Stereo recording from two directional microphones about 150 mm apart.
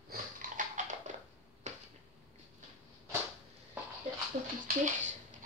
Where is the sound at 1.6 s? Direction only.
50° right (ahead or behind).